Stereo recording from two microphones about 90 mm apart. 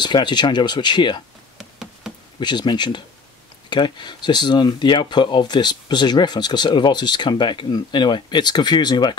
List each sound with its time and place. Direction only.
0.0 s speech: 55° left (ahead or behind)
1.6 s knock: 5° right (ahead or behind)
2.4 s speech: 55° left (ahead or behind)